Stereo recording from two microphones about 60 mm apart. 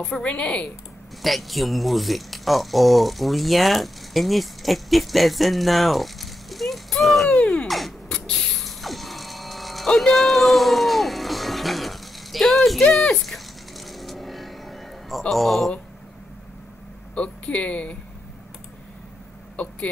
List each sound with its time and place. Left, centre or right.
0.0 s speech: centre
1.2 s speech: centre
7.2 s a sound: centre
7.6 s a sound: centre
8.1 s mechanisms: centre
9.9 s music: centre
13.2 s a sound: centre
17.1 s speech: centre
19.5 s speech: left